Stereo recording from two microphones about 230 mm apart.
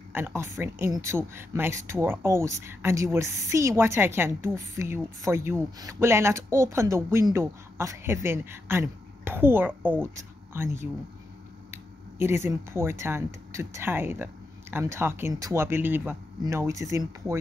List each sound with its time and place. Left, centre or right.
0.1 s speech: centre